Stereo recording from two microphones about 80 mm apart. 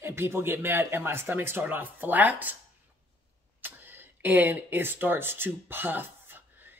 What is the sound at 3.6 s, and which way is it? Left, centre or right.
Speech, right.